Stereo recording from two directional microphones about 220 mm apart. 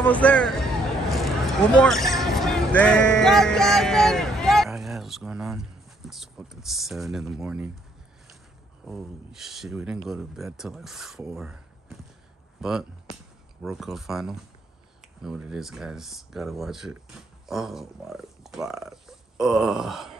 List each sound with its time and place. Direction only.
0.0 s speech: 5° left (ahead or behind)
8.8 s speech: centre (ahead or behind)
12.5 s speech: centre (ahead or behind)